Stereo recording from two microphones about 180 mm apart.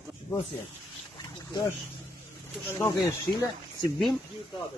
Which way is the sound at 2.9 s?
20° left (ahead or behind).